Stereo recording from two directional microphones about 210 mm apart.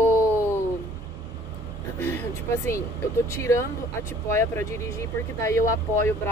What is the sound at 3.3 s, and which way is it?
Speech, 15° left (ahead or behind).